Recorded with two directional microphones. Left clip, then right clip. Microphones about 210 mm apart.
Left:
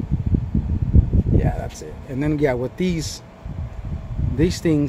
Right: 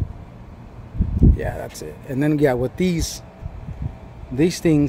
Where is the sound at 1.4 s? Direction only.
20° right (ahead or behind).